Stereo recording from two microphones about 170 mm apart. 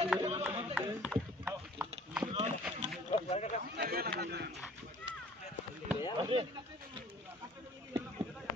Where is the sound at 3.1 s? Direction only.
40° left (ahead or behind).